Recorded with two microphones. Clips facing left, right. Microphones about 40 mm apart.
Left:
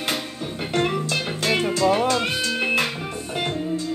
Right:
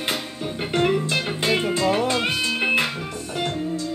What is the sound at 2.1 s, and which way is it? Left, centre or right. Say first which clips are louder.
Music: even; centre.